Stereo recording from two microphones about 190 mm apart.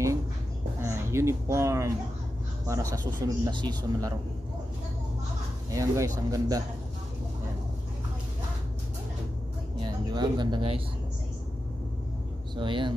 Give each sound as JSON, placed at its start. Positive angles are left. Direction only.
{"t": 0.8, "sound": "speech", "side_deg": -15}
{"t": 5.7, "sound": "speech", "side_deg": -15}
{"t": 9.8, "sound": "a sound", "side_deg": -20}
{"t": 12.5, "sound": "speech", "side_deg": -25}